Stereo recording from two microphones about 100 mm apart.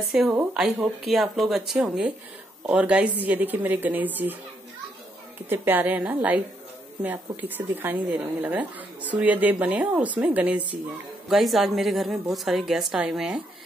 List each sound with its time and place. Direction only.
0.1 s a woman's voice: 5° right (ahead or behind)
5.5 s a woman's voice: 20° right (ahead or behind)
11.2 s a woman's voice: centre (ahead or behind)